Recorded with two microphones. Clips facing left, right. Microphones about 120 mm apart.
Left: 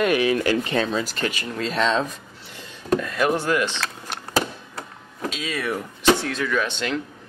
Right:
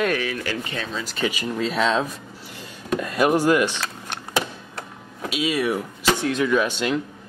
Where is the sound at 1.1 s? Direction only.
10° right (ahead or behind).